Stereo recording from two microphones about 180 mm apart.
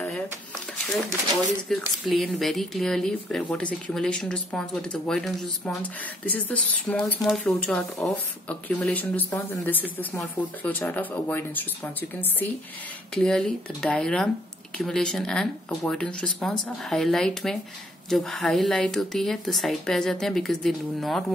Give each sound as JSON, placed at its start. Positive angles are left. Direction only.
{"t": 1.7, "sound": "speech", "side_deg": 0}